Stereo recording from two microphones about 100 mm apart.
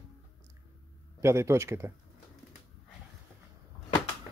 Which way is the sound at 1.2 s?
30° right (ahead or behind).